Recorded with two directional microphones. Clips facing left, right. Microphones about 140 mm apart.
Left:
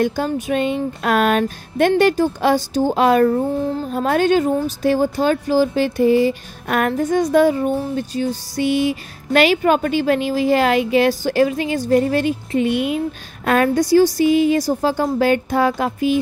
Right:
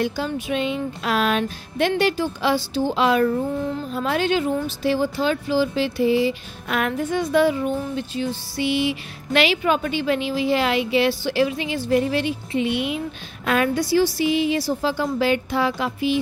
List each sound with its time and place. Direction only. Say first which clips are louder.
0.0 s speech: left 5 dB; 50° left (ahead or behind)